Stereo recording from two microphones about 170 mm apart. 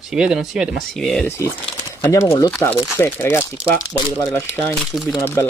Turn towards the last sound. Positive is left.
turn(degrees=0)  # may be behind; listen again after turning